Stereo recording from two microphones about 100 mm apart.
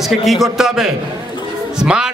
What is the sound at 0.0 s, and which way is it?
A man's voice, centre (ahead or behind).